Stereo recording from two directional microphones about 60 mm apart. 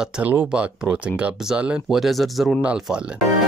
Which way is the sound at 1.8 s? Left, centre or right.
Centre.